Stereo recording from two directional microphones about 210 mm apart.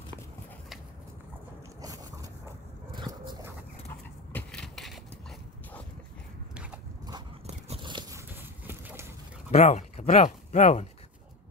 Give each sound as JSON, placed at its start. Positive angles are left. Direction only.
{"t": 2.9, "sound": "dog", "side_deg": -20}
{"t": 4.3, "sound": "a sound", "side_deg": 5}
{"t": 6.5, "sound": "biting", "side_deg": -5}
{"t": 7.1, "sound": "biting", "side_deg": -25}
{"t": 8.3, "sound": "clip-clop", "side_deg": -10}
{"t": 9.5, "sound": "speech", "side_deg": 30}